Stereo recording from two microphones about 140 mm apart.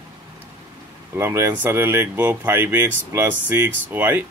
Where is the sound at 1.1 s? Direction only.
20° right (ahead or behind).